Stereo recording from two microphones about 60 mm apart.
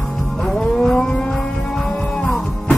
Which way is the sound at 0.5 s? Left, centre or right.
Centre.